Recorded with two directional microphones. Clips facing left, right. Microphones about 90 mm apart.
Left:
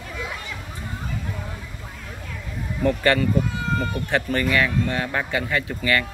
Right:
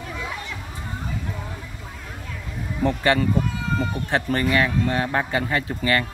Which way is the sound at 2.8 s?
25° right (ahead or behind).